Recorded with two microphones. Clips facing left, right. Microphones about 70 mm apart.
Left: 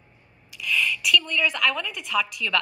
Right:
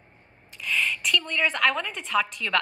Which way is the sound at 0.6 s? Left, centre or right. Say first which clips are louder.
Left 2 dB; right.